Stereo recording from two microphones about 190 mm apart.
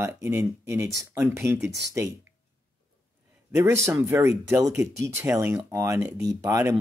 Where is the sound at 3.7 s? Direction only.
15° right (ahead or behind).